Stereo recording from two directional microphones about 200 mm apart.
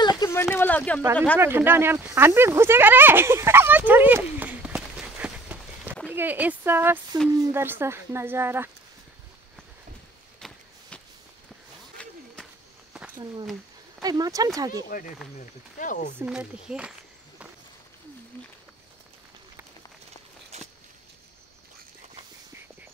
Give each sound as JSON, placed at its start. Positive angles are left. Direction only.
{"t": 0.2, "sound": "a sound", "side_deg": 15}
{"t": 1.1, "sound": "speech", "side_deg": 5}
{"t": 1.4, "sound": "speech", "side_deg": -10}
{"t": 10.4, "sound": "walk", "side_deg": 0}
{"t": 12.0, "sound": "run", "side_deg": 5}
{"t": 14.0, "sound": "speech", "side_deg": -20}
{"t": 14.9, "sound": "speech", "side_deg": 40}
{"t": 16.2, "sound": "speech", "side_deg": -5}
{"t": 18.3, "sound": "a sound", "side_deg": 10}
{"t": 20.5, "sound": "a sound", "side_deg": -35}